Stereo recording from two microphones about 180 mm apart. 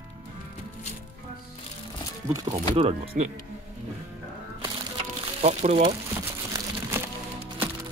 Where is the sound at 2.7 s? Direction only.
30° right (ahead or behind).